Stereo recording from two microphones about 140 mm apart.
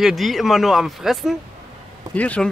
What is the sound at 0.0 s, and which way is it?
Speech, centre (ahead or behind).